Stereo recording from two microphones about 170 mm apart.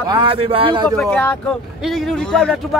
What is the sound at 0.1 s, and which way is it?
Speech, 30° right (ahead or behind).